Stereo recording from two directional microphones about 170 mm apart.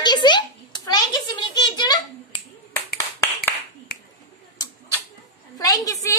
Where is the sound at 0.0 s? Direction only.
25° left (ahead or behind).